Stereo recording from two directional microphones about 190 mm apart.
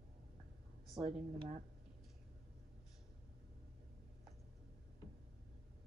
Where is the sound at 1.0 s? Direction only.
35° right (ahead or behind).